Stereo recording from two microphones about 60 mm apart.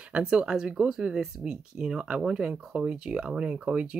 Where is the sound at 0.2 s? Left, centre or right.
Centre.